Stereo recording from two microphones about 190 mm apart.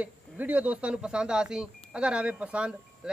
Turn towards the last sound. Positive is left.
turn(degrees=-5)  # may be behind; listen again after turning